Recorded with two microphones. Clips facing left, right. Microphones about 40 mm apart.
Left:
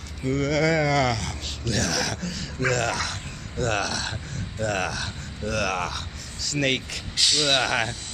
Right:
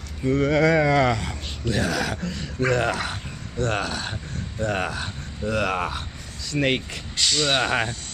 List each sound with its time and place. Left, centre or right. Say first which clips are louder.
0.2 s speech: right 3 dB; centre